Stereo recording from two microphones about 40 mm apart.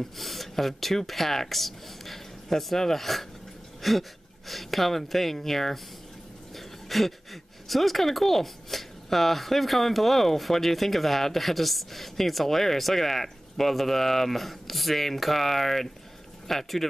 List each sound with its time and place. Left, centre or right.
0.0 s speech: centre
6.5 s a sound: centre
7.6 s speech: centre